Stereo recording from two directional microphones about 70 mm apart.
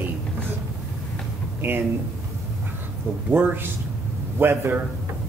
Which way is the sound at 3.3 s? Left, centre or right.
Right.